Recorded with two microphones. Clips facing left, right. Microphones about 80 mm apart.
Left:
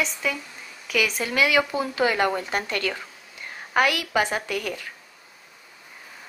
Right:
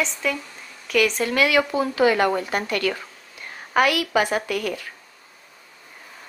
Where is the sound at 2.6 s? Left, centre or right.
Left.